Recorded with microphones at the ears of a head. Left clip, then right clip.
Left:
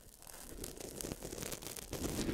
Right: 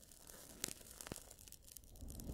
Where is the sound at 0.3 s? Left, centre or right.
Left.